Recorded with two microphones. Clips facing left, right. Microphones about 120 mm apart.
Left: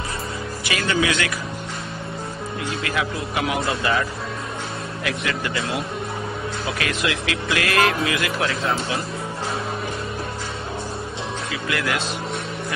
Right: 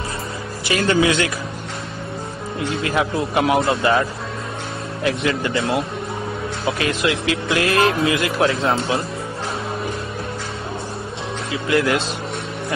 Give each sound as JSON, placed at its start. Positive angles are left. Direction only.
{"t": 0.7, "sound": "speech", "side_deg": -30}
{"t": 2.7, "sound": "speech", "side_deg": -30}
{"t": 5.0, "sound": "speech", "side_deg": -30}